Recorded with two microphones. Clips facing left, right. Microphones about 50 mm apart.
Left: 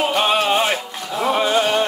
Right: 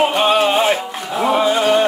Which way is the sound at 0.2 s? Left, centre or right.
Centre.